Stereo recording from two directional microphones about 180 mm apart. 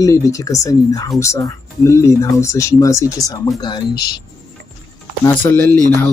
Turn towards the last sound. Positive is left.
turn(degrees=10)  # may be behind; listen again after turning